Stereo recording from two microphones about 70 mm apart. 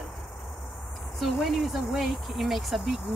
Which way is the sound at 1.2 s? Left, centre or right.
Centre.